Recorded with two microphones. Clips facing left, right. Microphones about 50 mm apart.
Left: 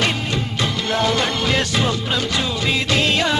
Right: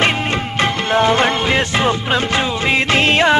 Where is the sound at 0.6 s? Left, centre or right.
Right.